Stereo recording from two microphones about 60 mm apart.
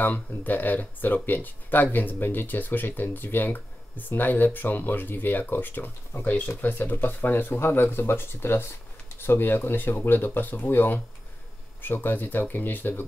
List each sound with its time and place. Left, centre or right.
0.0 s speech: left